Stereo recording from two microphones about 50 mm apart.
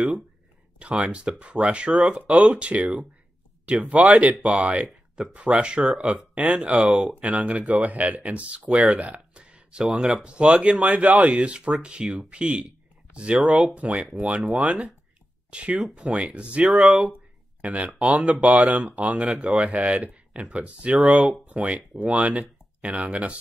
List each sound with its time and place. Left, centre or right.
0.7 s speech: right
13.7 s speech: right
14.4 s speech: centre
15.5 s speech: right
16.6 s speech: centre
17.1 s speech: right
19.3 s speech: centre
19.6 s speech: right